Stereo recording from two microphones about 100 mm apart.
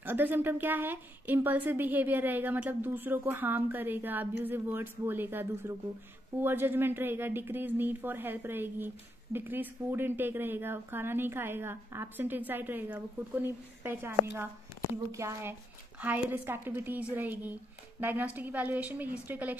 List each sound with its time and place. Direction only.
0.0 s speech: 20° right (ahead or behind)
16.0 s a woman's voice: 20° right (ahead or behind)